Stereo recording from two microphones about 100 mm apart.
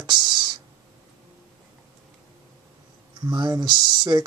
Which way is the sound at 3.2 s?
45° right (ahead or behind).